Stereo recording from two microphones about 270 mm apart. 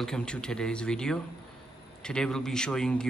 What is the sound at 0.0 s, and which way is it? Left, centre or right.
Speech, centre.